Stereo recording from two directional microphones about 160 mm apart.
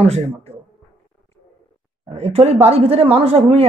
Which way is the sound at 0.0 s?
40° right (ahead or behind).